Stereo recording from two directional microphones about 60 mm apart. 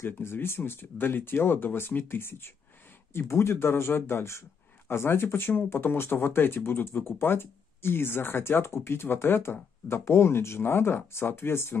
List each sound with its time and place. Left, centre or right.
0.0 s speech: left